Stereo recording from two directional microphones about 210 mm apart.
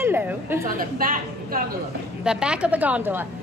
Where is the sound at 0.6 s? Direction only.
40° right (ahead or behind).